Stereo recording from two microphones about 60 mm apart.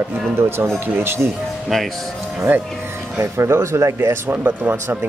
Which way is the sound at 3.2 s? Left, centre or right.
Right.